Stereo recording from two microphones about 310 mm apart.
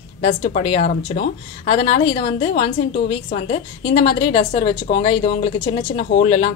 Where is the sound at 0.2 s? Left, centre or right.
Left.